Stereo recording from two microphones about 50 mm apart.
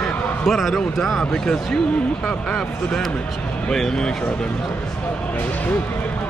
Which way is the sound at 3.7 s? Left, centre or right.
Centre.